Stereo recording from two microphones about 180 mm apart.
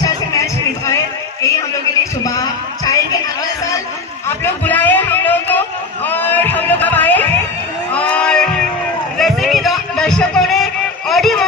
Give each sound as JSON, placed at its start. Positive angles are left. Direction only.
{"t": 2.2, "sound": "music", "side_deg": 20}
{"t": 4.6, "sound": "a sound", "side_deg": 10}
{"t": 7.9, "sound": "music", "side_deg": 5}